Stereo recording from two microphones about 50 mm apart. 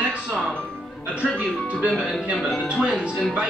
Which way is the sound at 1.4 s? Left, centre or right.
Right.